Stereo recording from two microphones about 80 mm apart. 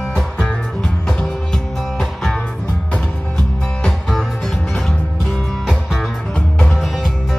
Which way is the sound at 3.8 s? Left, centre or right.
Centre.